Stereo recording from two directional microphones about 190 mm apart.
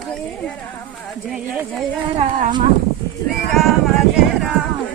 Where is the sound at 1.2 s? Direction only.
Centre (ahead or behind).